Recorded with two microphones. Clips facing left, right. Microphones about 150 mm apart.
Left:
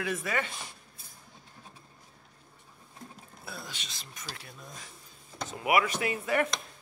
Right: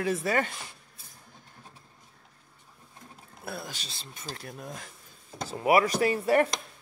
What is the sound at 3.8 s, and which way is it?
Speech, 30° right (ahead or behind).